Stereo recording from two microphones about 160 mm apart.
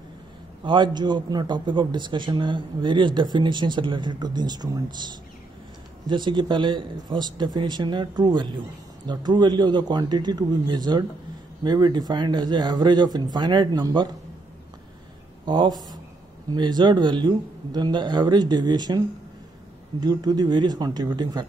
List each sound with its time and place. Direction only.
0.7 s a man's voice: 30° right (ahead or behind)
15.4 s a man's voice: 30° right (ahead or behind)